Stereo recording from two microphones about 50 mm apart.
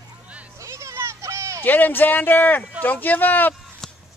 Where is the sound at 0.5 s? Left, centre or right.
Right.